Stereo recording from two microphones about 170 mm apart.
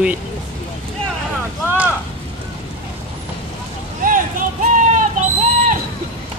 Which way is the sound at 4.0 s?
50° right (ahead or behind).